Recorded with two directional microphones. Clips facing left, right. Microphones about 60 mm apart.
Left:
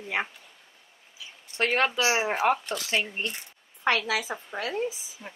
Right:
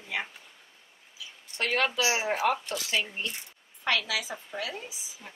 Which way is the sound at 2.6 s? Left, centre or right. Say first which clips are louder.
Left 2 dB; left.